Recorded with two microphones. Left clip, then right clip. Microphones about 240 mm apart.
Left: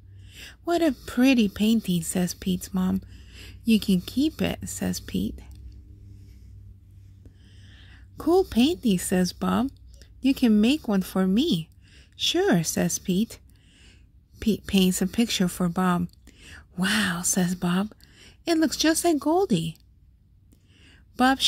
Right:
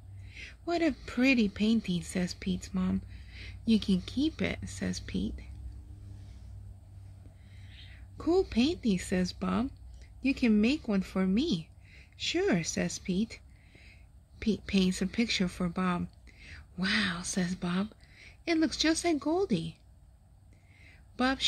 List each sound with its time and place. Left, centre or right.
0.3 s speech: left
8.2 s speech: left
20.8 s a sound: left